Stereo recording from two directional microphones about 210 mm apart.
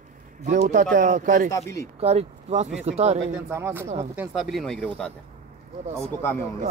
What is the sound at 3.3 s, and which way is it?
Speech, 10° right (ahead or behind).